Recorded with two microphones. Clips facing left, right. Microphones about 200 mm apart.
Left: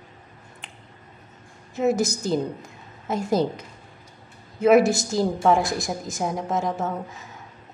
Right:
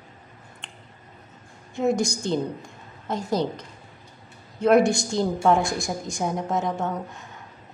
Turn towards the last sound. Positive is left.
turn(degrees=0)  # may be behind; listen again after turning